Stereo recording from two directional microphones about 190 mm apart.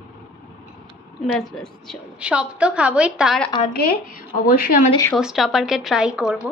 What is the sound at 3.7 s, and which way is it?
Speech, 55° left (ahead or behind).